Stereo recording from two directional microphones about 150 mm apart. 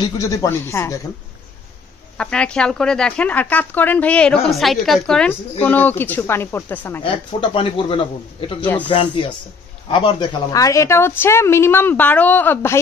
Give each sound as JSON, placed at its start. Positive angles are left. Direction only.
{"t": 0.0, "sound": "speech", "side_deg": 25}
{"t": 2.1, "sound": "a woman's voice", "side_deg": 5}
{"t": 7.1, "sound": "a man's voice", "side_deg": 35}
{"t": 8.5, "sound": "a woman's voice", "side_deg": 10}
{"t": 8.8, "sound": "a man's voice", "side_deg": 30}